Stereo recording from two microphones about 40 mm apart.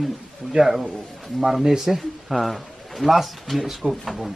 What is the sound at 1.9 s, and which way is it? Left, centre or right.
Speech, centre.